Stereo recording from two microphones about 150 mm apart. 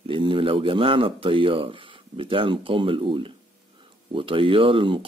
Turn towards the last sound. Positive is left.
turn(degrees=-35)  # may be behind; listen again after turning